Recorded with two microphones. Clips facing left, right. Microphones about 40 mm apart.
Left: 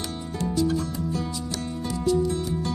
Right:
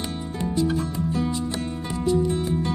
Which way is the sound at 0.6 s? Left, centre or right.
Right.